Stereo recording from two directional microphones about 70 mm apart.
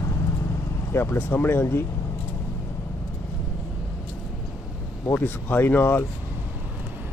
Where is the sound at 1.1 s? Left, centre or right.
Left.